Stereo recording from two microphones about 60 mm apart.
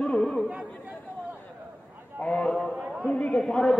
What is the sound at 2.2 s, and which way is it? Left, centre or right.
Speech, centre.